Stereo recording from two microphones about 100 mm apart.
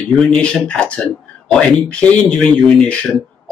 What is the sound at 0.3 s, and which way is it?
Speech, 10° left (ahead or behind).